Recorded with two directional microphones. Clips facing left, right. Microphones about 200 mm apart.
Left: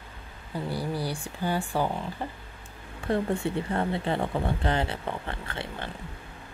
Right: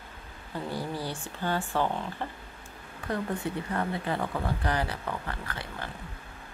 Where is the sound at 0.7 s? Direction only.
10° left (ahead or behind).